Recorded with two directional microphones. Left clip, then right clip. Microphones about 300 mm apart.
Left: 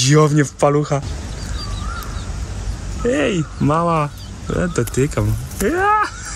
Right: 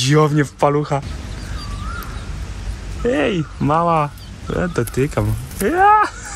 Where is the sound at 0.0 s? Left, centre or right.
Centre.